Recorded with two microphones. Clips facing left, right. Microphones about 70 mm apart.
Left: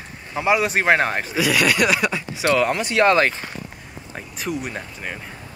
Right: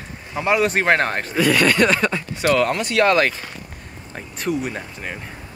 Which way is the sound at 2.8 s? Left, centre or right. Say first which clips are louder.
Even; left.